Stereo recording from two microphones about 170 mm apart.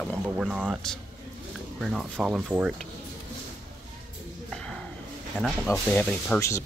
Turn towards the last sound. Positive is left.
turn(degrees=5)  # may be behind; listen again after turning